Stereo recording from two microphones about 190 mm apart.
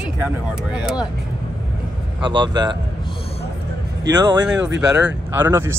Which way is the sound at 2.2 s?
25° right (ahead or behind).